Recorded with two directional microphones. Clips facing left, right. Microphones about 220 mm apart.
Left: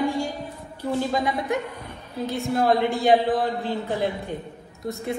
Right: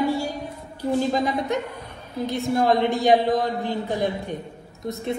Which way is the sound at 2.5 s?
20° right (ahead or behind).